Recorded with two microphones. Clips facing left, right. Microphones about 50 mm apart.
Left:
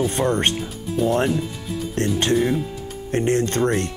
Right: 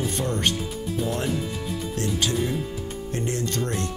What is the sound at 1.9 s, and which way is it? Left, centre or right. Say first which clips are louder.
Speech: left 7 dB; left.